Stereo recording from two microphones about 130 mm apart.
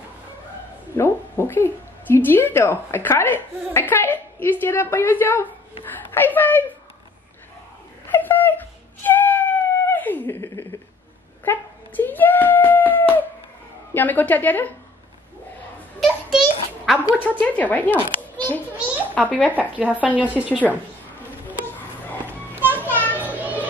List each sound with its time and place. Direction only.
0.9 s speech: 15° left (ahead or behind)
8.1 s a sound: 15° left (ahead or behind)
13.9 s speech: 15° left (ahead or behind)
16.0 s a sound: centre (ahead or behind)
17.2 s speech: 10° left (ahead or behind)
19.7 s a woman's voice: 10° right (ahead or behind)
22.7 s children playing: 15° left (ahead or behind)
23.1 s children playing: 10° right (ahead or behind)